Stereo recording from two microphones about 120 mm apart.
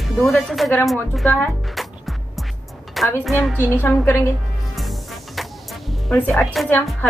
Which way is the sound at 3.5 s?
15° left (ahead or behind).